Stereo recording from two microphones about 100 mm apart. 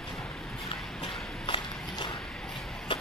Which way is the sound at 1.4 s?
50° left (ahead or behind).